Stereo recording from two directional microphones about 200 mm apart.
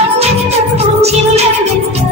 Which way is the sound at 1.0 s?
30° right (ahead or behind).